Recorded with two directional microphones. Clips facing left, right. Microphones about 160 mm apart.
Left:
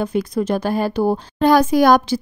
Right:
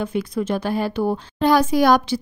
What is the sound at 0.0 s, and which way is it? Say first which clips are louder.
A woman's voice: left 3 dB; 40° left (ahead or behind).